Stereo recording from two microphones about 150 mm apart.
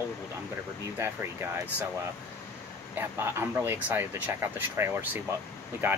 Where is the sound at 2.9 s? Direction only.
15° right (ahead or behind).